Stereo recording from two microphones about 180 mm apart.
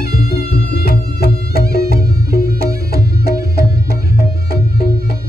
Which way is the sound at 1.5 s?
55° right (ahead or behind).